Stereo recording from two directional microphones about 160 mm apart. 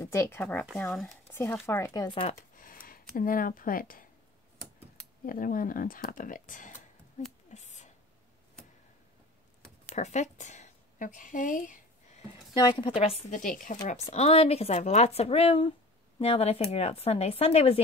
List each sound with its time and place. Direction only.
0.0 s speech: 15° left (ahead or behind)
0.7 s speech: centre (ahead or behind)
1.3 s speech: 15° left (ahead or behind)
2.0 s speech: 35° left (ahead or behind)
2.5 s a sound: 60° left (ahead or behind)
5.2 s speech: 60° left (ahead or behind)
7.4 s a sound: 45° left (ahead or behind)
9.9 s speech: 45° left (ahead or behind)
12.5 s a woman's voice: 25° left (ahead or behind)
12.9 s speech: 45° left (ahead or behind)
14.1 s speech: 40° left (ahead or behind)